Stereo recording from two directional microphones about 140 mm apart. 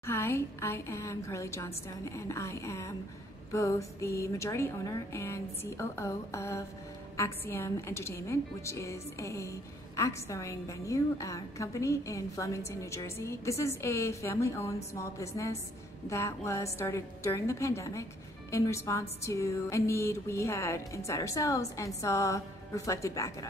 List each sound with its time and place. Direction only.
0.0 s a woman's voice: 15° left (ahead or behind)